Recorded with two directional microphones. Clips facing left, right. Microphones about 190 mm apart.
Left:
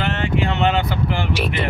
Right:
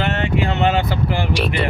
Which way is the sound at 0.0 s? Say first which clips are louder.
Right 1 dB; 40° right (ahead or behind).